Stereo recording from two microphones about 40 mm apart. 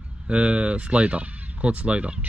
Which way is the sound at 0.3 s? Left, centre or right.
Right.